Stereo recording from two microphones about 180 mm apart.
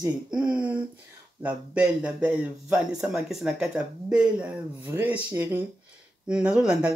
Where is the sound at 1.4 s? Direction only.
10° right (ahead or behind).